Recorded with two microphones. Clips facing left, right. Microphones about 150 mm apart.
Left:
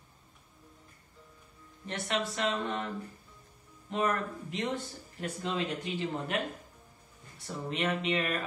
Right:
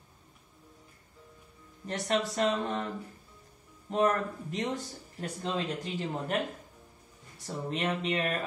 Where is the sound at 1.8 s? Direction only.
40° right (ahead or behind).